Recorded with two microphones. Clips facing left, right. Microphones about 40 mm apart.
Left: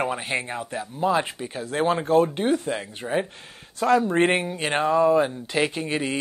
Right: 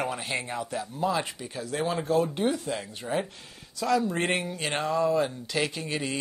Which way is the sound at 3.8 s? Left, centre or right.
Left.